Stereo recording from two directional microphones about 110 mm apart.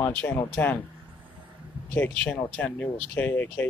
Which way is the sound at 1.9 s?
15° left (ahead or behind).